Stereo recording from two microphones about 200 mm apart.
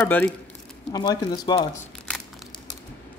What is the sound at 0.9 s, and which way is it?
Speech, 20° left (ahead or behind).